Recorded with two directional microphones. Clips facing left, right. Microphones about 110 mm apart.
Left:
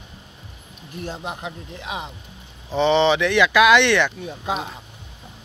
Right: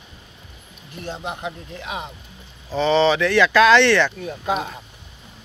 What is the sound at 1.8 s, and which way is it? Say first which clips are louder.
Speech: even; 25° left (ahead or behind).